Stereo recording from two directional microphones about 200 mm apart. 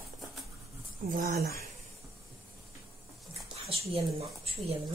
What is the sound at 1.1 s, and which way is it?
Speech, 45° right (ahead or behind).